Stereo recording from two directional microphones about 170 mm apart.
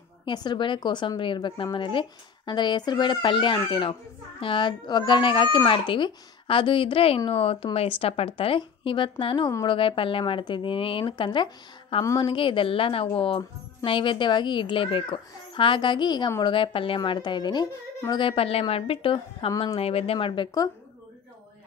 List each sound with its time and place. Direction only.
0.2 s a child's voice: 25° left (ahead or behind)